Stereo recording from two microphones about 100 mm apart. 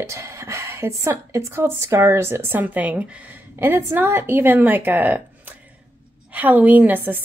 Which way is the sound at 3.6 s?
25° right (ahead or behind).